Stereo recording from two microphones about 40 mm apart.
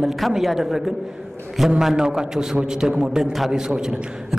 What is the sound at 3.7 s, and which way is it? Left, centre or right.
Speech, right.